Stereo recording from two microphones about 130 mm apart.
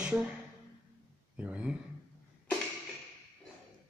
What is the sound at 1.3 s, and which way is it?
Speech, 10° right (ahead or behind).